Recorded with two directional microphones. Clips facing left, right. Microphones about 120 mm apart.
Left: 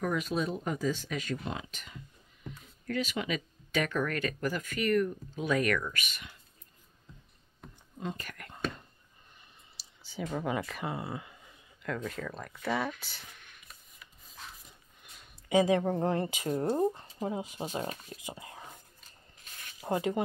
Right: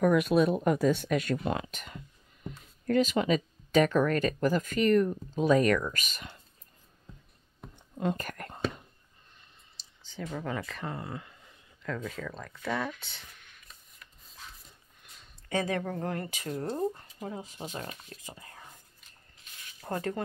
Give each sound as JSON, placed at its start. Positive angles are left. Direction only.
{"t": 0.0, "sound": "speech", "side_deg": -60}
{"t": 2.9, "sound": "speech", "side_deg": -40}
{"t": 8.0, "sound": "speech", "side_deg": -50}
{"t": 8.5, "sound": "whispering", "side_deg": -5}
{"t": 10.0, "sound": "speech", "side_deg": 10}
{"t": 15.1, "sound": "speech", "side_deg": 10}
{"t": 17.6, "sound": "speech", "side_deg": 40}
{"t": 18.1, "sound": "speech", "side_deg": 15}
{"t": 19.8, "sound": "speech", "side_deg": 10}